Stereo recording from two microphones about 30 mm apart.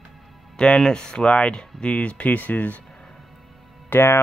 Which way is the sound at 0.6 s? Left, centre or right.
Left.